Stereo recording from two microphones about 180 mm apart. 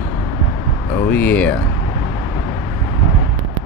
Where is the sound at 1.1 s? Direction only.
10° left (ahead or behind).